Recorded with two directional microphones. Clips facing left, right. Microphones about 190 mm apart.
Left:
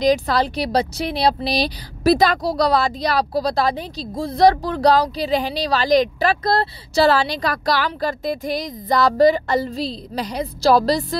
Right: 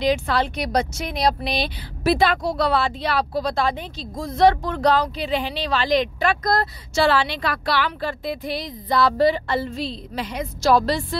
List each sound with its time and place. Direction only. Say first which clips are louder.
0.0 s speech: left 3 dB; 40° left (ahead or behind)